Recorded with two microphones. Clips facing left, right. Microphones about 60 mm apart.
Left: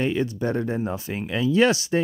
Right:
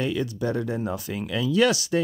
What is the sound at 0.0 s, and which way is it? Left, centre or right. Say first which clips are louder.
Speech: left 2 dB; left.